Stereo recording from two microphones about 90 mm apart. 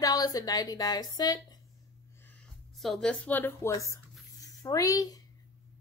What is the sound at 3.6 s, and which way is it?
Speech, 35° left (ahead or behind).